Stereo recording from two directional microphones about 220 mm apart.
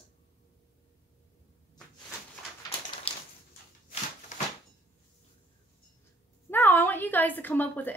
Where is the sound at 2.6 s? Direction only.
25° left (ahead or behind).